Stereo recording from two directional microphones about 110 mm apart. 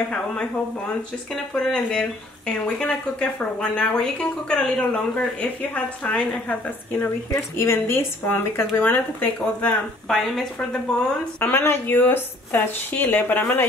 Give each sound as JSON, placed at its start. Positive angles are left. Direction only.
{"t": 1.3, "sound": "speech", "side_deg": 5}
{"t": 7.2, "sound": "speech", "side_deg": 25}
{"t": 10.0, "sound": "speech", "side_deg": 0}